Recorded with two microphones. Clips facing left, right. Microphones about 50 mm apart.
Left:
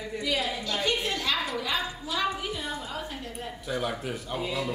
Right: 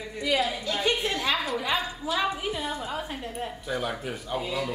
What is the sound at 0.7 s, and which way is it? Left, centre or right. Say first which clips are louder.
Speech: right 2 dB; centre.